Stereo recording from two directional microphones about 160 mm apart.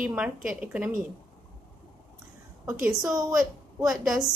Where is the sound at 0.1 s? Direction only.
5° right (ahead or behind).